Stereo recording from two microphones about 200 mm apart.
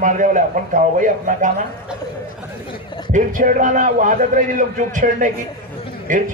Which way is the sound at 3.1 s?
40° right (ahead or behind).